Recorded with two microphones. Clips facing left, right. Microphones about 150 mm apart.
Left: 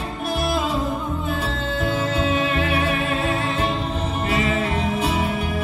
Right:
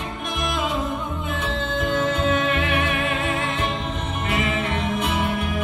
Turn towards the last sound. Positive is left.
turn(degrees=35)  # may be behind; listen again after turning